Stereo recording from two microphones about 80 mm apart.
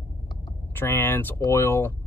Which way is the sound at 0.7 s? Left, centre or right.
Left.